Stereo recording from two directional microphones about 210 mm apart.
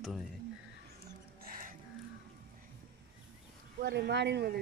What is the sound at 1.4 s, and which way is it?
Music, 40° right (ahead or behind).